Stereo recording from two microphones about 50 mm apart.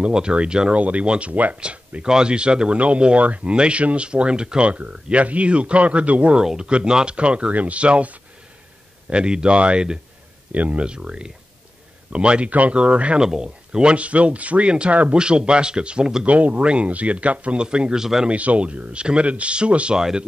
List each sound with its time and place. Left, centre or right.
0.0 s speech: centre
0.7 s speech: right
6.3 s speech: centre
18.3 s speech: right
20.0 s speech: centre